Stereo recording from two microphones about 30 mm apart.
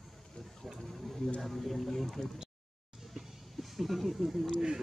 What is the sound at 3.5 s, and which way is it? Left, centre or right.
Speech, centre.